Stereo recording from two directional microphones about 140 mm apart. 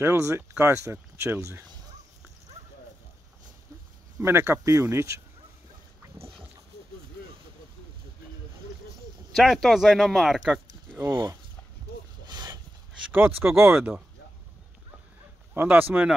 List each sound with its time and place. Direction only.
0.0 s speech: 20° right (ahead or behind)
4.2 s speech: 20° right (ahead or behind)
6.1 s dog: 45° right (ahead or behind)
9.3 s speech: centre (ahead or behind)
12.3 s a sound: 30° right (ahead or behind)
13.1 s speech: 15° right (ahead or behind)
15.5 s speech: 15° right (ahead or behind)